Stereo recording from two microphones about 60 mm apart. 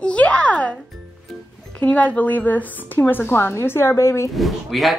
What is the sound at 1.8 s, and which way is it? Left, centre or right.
A woman's voice, left.